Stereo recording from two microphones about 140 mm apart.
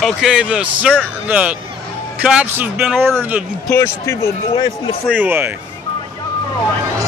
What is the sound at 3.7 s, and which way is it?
Speech, 20° left (ahead or behind).